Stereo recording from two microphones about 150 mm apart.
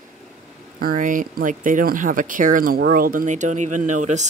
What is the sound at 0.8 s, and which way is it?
Speech, 70° right (ahead or behind).